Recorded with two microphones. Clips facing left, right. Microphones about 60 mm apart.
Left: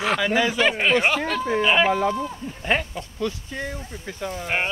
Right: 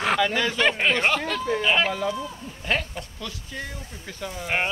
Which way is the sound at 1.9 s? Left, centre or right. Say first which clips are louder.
Left 5 dB; left.